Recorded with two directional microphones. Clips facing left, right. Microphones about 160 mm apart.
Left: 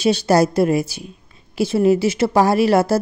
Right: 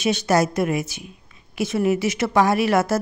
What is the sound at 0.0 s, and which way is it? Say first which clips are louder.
Speech: left 4 dB; 35° left (ahead or behind).